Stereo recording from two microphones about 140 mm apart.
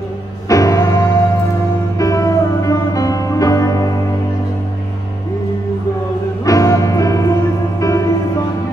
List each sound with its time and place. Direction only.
0.5 s music: 25° left (ahead or behind)
6.4 s music: 25° left (ahead or behind)